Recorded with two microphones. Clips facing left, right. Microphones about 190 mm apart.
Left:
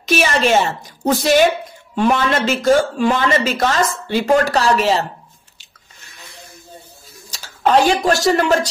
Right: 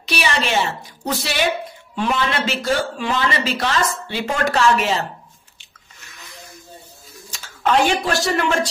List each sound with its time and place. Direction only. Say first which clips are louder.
0.0 s speech: left 6 dB; 45° left (ahead or behind)
7.2 s speech: left 3 dB; 35° left (ahead or behind)